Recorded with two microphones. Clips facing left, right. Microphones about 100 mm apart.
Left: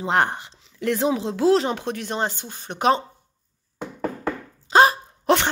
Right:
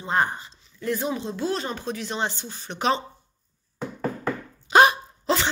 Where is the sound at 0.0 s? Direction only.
75° left (ahead or behind); by 3.0 s 50° left (ahead or behind).